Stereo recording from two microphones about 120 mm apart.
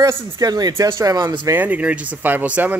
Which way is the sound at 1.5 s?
10° right (ahead or behind).